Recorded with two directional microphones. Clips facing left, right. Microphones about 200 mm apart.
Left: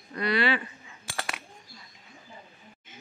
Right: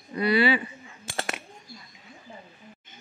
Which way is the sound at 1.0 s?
25° right (ahead or behind).